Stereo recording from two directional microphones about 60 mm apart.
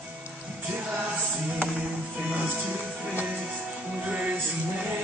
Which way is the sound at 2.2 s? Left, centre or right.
Right.